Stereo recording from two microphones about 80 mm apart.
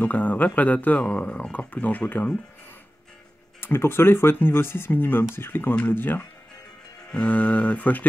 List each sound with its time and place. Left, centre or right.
0.0 s speech: centre
3.6 s speech: left